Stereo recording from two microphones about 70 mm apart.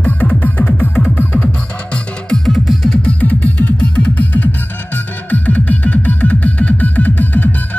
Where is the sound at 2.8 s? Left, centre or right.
Centre.